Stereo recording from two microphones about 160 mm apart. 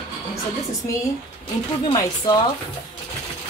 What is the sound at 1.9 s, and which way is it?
Speech, 30° left (ahead or behind).